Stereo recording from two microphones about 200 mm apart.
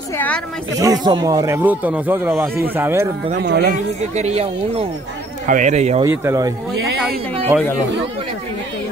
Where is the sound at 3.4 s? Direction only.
55° right (ahead or behind); by 6.0 s 35° right (ahead or behind).